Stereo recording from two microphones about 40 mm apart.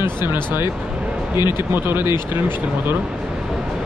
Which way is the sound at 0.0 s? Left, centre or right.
Right.